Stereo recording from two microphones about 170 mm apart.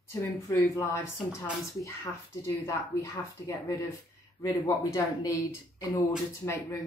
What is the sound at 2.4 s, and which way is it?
Speech, 15° left (ahead or behind).